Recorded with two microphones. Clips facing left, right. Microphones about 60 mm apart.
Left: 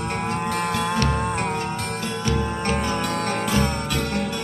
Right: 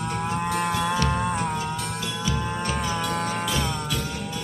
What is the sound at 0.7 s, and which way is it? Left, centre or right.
Music, left.